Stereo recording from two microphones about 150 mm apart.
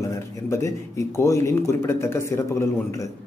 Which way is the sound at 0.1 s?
20° left (ahead or behind).